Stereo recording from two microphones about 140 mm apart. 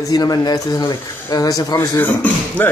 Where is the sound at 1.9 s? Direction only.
15° left (ahead or behind).